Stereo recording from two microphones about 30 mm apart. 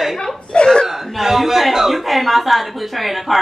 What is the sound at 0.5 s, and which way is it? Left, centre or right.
Speech, left.